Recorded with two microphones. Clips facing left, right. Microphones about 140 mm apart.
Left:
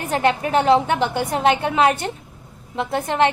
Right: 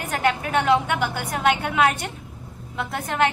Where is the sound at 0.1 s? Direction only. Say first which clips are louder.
Left 4 dB; 30° left (ahead or behind).